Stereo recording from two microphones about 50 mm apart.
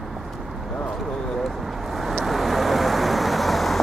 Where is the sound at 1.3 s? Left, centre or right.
Centre.